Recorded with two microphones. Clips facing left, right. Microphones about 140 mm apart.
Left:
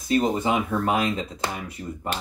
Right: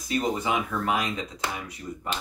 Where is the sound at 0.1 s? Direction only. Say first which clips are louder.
Left 4 dB; 30° left (ahead or behind).